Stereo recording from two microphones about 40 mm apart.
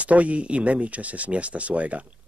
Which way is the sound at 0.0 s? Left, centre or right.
Right.